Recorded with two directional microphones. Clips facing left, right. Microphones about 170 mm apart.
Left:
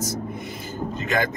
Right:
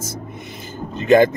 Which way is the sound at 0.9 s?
25° right (ahead or behind).